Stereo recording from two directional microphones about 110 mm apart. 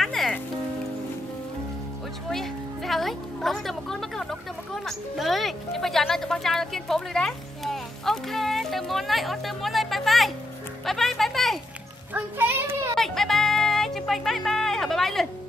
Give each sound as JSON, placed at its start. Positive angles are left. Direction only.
{"t": 0.0, "sound": "rain on surface", "side_deg": 0}
{"t": 2.2, "sound": "music", "side_deg": 0}
{"t": 10.9, "sound": "speech", "side_deg": 0}
{"t": 12.1, "sound": "a child's voice", "side_deg": -20}
{"t": 12.9, "sound": "music", "side_deg": 5}